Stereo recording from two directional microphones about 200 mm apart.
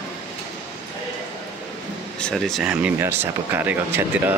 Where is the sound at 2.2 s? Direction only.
Centre (ahead or behind).